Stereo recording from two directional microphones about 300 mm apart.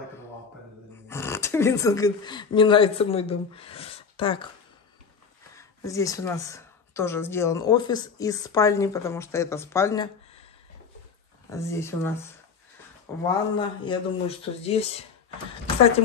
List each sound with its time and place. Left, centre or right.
1.0 s speech: centre
5.6 s speech: centre
11.5 s speech: centre
13.2 s speech: centre